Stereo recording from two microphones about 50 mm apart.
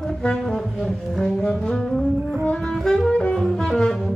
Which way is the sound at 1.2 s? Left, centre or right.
Centre.